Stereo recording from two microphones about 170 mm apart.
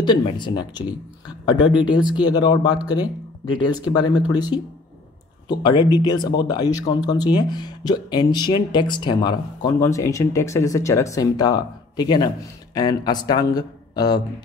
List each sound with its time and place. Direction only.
0.0 s speech: 25° left (ahead or behind)